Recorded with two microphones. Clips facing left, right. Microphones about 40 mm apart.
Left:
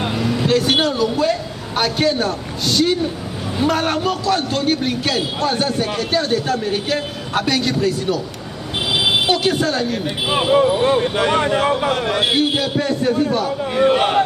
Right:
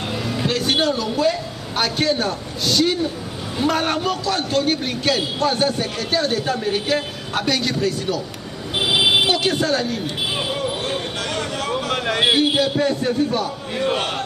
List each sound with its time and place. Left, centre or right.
0.2 s a man's voice: centre
8.8 s a sound: centre
9.3 s a man's voice: centre
10.0 s speech: left
12.2 s a man's voice: centre
13.7 s a man's voice: centre